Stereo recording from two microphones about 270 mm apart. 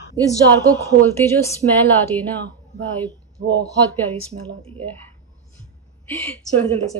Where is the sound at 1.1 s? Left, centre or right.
Centre.